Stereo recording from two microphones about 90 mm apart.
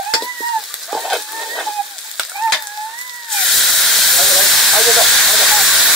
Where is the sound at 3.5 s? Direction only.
Centre (ahead or behind).